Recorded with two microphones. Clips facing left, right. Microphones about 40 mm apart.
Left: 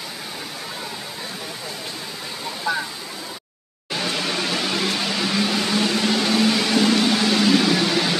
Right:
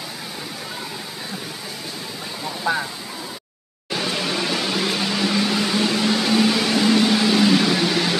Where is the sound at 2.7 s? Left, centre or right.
Centre.